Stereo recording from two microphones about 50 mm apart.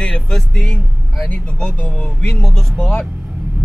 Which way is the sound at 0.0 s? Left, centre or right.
Centre.